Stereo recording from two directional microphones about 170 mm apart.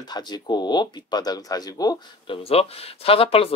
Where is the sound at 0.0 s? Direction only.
25° left (ahead or behind).